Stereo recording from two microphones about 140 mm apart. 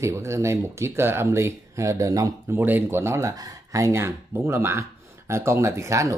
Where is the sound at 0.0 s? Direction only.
20° right (ahead or behind).